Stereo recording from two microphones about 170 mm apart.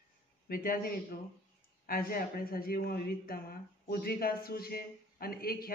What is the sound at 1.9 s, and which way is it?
Speech, 60° left (ahead or behind).